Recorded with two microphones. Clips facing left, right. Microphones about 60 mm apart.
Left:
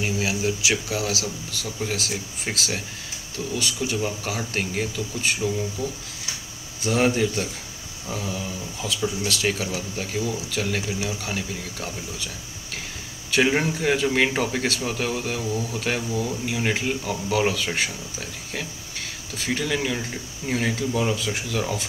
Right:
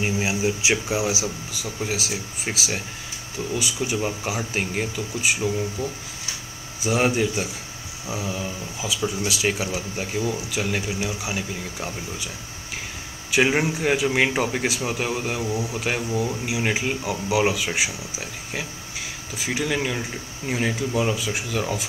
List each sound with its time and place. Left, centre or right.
0.0 s speech: right
1.6 s speech: centre
13.3 s speech: centre